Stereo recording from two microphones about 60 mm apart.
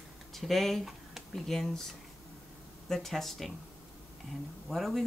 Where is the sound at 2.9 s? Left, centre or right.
Centre.